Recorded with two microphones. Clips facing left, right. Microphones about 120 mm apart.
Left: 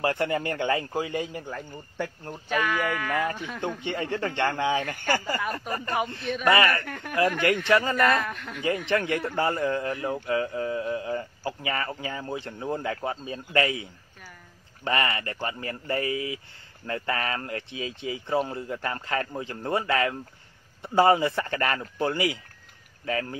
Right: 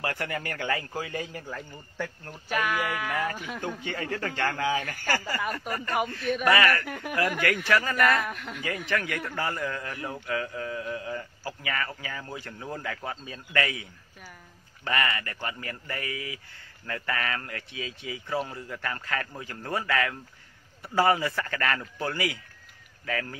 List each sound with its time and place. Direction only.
0.0 s a man's voice: 25° left (ahead or behind)
2.5 s speech: 10° right (ahead or behind)
3.8 s a man's voice: 25° left (ahead or behind)
6.8 s speech: 5° right (ahead or behind)
7.6 s a man's voice: 25° left (ahead or behind)
8.2 s speech: 5° right (ahead or behind)
8.8 s a man's voice: 25° left (ahead or behind)
14.9 s a man's voice: 25° left (ahead or behind)